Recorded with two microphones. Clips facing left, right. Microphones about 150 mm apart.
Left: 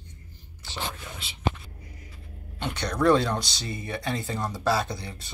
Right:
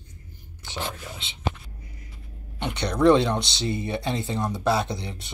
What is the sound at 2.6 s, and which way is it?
Speech, 20° right (ahead or behind).